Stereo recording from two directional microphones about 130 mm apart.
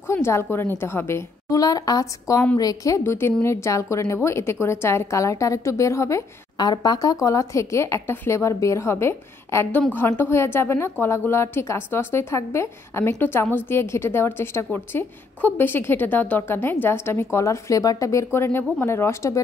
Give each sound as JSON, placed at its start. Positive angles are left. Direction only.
{"t": 0.0, "sound": "a woman's voice", "side_deg": 20}